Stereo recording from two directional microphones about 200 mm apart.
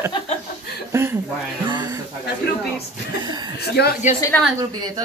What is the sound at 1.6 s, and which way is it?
Music, 20° right (ahead or behind).